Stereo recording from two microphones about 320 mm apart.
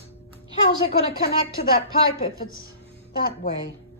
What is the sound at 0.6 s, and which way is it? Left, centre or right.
Speech, centre.